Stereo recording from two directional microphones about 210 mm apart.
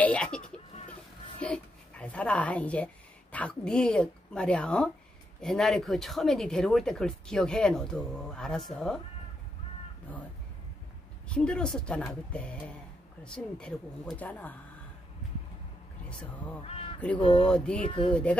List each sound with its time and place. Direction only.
0.0 s a sound: 5° left (ahead or behind)
1.4 s speech: 5° left (ahead or behind)
11.2 s speech: 5° left (ahead or behind)
16.6 s crow: 30° left (ahead or behind)
17.2 s speech: 25° left (ahead or behind)
17.5 s speech: 5° left (ahead or behind)
17.8 s speech: 25° left (ahead or behind)
18.1 s speech: 5° left (ahead or behind)